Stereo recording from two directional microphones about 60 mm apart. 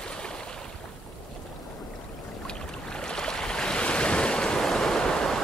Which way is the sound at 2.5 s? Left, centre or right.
Centre.